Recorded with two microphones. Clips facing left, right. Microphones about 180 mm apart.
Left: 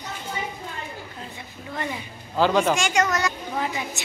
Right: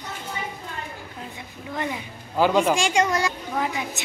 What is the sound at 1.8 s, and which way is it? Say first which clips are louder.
Speech: right 2 dB; 10° right (ahead or behind).